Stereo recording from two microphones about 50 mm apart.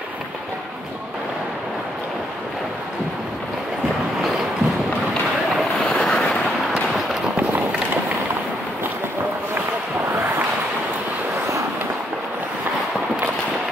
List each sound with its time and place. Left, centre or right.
5.9 s vehicle: centre
7.3 s run: right